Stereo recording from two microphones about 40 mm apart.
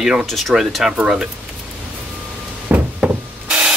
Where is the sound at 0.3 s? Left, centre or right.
Centre.